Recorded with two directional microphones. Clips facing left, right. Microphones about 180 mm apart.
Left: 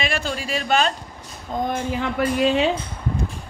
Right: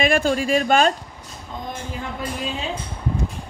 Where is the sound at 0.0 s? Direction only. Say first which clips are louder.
Right 7 dB; 50° right (ahead or behind).